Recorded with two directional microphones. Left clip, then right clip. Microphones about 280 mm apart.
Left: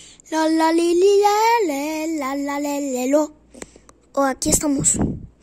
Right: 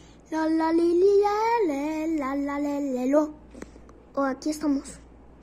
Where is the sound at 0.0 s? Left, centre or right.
Left.